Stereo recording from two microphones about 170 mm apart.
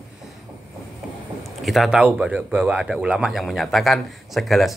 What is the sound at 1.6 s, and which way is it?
Speech, centre (ahead or behind).